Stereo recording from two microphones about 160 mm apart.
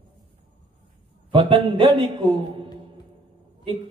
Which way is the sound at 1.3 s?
30° right (ahead or behind).